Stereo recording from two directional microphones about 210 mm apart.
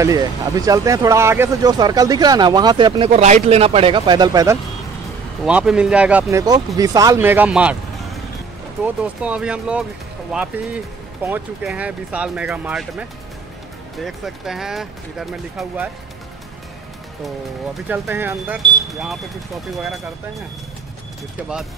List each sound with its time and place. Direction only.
0.0 s speech: 15° right (ahead or behind)
5.4 s speech: 5° right (ahead or behind)
6.8 s speech: 15° right (ahead or behind)
13.9 s speech: centre (ahead or behind)
17.7 s speech: 10° right (ahead or behind)